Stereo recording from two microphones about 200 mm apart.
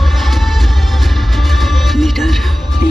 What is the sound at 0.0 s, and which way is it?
Music, centre (ahead or behind).